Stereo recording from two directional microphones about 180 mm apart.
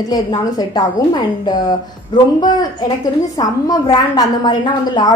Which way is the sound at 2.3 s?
20° left (ahead or behind).